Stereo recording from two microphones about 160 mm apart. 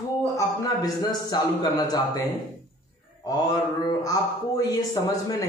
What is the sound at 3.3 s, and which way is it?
A woman's voice, 25° left (ahead or behind).